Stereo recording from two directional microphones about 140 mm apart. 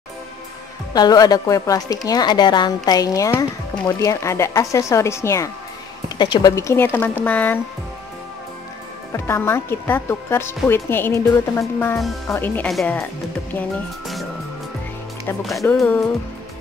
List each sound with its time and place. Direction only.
0.9 s a woman's voice: 30° left (ahead or behind)
6.0 s speech: 35° left (ahead or behind)
6.5 s speech: 15° left (ahead or behind)
9.1 s speech: 20° left (ahead or behind)
12.6 s speech: centre (ahead or behind)
15.7 s speech: 5° left (ahead or behind)